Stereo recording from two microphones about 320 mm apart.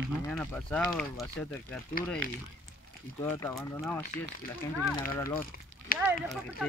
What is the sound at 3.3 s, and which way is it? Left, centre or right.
Speech, centre.